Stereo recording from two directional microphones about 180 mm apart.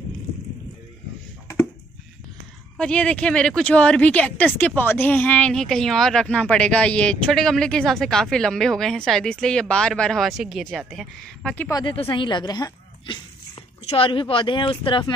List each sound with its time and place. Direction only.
2.8 s speech: 5° left (ahead or behind)
11.7 s a woman's voice: 30° left (ahead or behind)